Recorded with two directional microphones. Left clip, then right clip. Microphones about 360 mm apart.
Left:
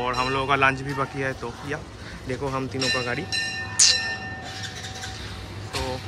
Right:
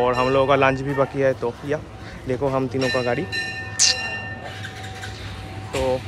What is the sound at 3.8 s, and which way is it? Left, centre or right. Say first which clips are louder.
Music: even; centre.